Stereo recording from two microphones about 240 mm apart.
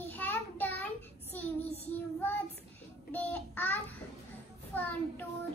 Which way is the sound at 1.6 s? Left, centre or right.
Left.